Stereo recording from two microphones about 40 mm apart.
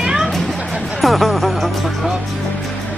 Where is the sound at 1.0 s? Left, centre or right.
Centre.